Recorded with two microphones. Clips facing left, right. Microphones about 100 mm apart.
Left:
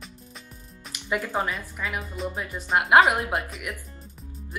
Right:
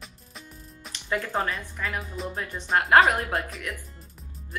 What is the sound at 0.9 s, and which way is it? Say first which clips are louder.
Speech: left 1 dB; 15° left (ahead or behind).